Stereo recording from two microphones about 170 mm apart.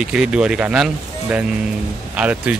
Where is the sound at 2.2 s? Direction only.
5° right (ahead or behind).